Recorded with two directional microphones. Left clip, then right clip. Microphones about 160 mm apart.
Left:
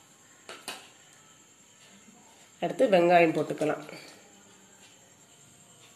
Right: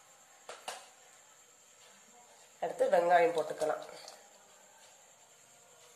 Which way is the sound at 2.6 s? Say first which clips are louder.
Left 6 dB; 40° left (ahead or behind).